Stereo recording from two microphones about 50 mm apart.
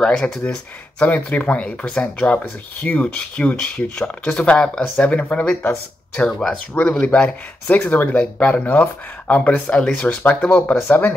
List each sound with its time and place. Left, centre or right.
0.0 s speech: centre
0.9 s speech: left